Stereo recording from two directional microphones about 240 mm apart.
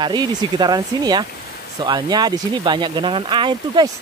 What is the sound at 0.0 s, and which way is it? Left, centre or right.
Speech, centre.